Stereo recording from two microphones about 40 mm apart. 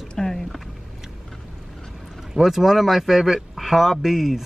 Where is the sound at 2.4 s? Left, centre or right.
Centre.